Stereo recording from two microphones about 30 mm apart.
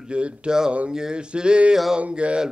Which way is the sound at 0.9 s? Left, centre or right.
Right.